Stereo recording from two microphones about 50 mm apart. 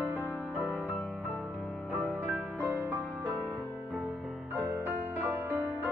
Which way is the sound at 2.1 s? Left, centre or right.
Right.